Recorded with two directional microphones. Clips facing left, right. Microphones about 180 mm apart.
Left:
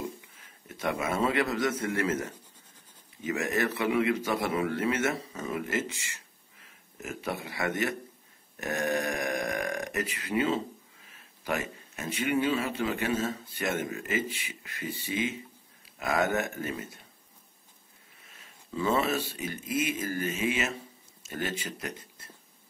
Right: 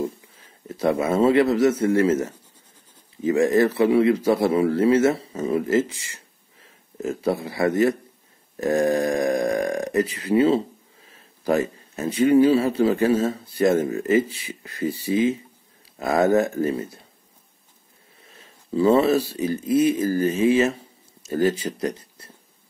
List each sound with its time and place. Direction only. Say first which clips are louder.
0.7 s a man's voice: right 9 dB; 30° right (ahead or behind)
18.2 s speech: right 6 dB; 35° right (ahead or behind)